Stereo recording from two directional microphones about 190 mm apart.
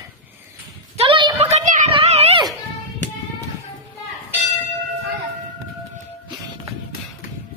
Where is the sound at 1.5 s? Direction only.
40° right (ahead or behind).